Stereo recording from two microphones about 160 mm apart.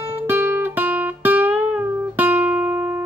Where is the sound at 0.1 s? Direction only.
15° right (ahead or behind).